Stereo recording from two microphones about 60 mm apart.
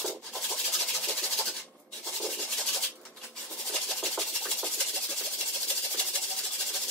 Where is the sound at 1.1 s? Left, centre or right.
Centre.